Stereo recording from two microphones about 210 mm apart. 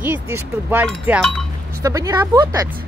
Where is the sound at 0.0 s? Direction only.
10° right (ahead or behind).